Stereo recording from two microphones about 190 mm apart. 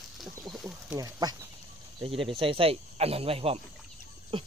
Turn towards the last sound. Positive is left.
turn(degrees=-30)  # may be behind; listen again after turning